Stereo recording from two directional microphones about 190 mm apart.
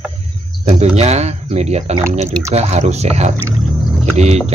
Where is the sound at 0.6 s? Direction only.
35° right (ahead or behind).